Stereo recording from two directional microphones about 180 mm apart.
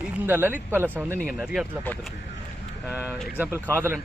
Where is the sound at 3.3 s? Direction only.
10° right (ahead or behind).